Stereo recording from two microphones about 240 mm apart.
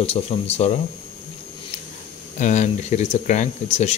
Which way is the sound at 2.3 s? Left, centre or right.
Left.